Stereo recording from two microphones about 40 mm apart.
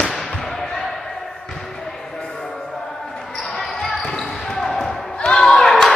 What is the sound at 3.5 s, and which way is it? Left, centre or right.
Basketball bounce, centre.